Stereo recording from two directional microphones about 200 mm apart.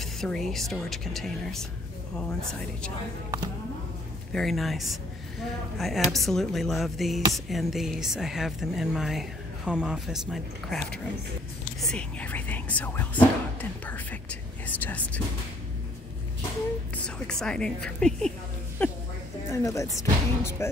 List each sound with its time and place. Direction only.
0.0 s speech: centre (ahead or behind)
4.3 s speech: centre (ahead or behind)
16.9 s speech: 5° left (ahead or behind)
19.5 s speech: 15° left (ahead or behind)